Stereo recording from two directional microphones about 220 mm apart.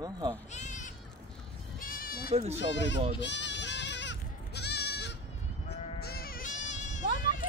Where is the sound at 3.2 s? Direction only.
55° left (ahead or behind).